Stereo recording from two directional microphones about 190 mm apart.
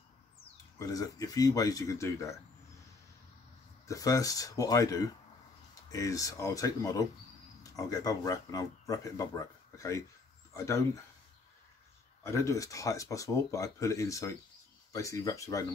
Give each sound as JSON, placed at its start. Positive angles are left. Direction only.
{"t": 0.7, "sound": "speech", "side_deg": 20}
{"t": 3.8, "sound": "speech", "side_deg": 15}
{"t": 12.2, "sound": "speech", "side_deg": 15}